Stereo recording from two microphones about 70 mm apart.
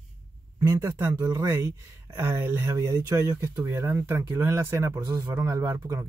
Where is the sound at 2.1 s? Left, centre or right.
Right.